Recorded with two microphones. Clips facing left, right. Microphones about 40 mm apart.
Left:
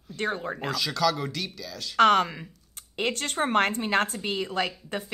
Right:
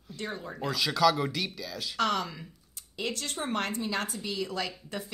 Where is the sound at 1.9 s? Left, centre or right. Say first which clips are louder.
Left 10 dB; left.